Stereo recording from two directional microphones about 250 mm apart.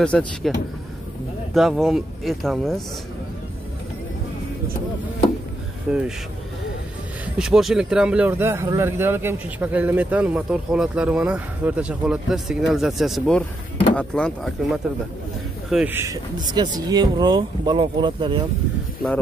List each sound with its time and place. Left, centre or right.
0.0 s speech: centre
5.9 s speech: centre
7.3 s speech: centre